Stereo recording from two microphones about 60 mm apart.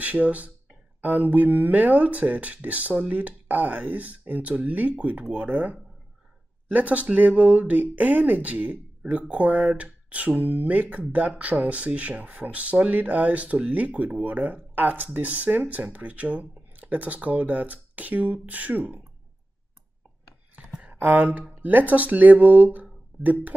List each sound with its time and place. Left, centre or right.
0.0 s speech: right
20.5 s a sound: right
21.5 s speech: right